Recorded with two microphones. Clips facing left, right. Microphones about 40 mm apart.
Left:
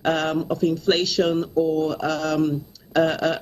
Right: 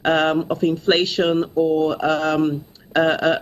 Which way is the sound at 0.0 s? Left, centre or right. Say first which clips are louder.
Right 4 dB; right.